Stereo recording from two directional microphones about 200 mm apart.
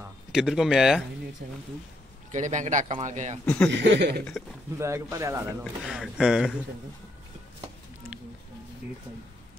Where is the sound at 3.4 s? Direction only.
5° left (ahead or behind).